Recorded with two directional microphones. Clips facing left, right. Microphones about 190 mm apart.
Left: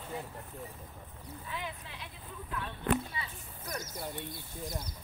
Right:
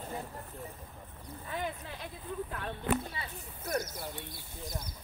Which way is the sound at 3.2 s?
50° right (ahead or behind).